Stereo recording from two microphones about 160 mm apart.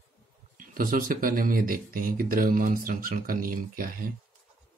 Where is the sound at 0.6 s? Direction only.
60° right (ahead or behind).